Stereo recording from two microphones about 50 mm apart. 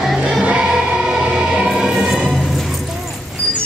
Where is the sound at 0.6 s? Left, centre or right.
Centre.